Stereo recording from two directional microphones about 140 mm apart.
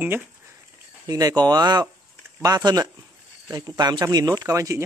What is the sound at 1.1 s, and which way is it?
Speech, 25° right (ahead or behind).